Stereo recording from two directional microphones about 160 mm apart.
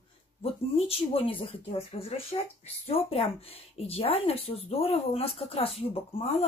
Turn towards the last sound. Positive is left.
turn(degrees=35)  # may be behind; listen again after turning